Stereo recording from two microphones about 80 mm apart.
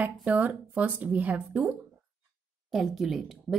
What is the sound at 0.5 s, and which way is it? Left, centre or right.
Speech, centre.